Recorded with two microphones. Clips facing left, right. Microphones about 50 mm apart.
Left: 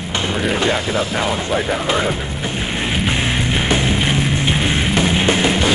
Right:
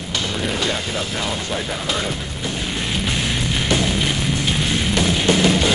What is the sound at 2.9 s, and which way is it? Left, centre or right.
Music, left.